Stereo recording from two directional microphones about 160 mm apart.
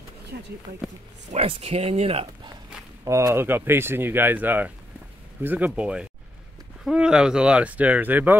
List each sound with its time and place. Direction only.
0.3 s speech: 80° right
1.3 s speech: 40° right (ahead or behind)
3.1 s speech: 15° right (ahead or behind)